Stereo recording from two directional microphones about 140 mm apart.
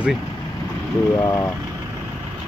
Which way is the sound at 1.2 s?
20° left (ahead or behind).